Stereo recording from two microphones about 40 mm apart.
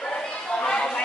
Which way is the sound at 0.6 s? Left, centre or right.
Left.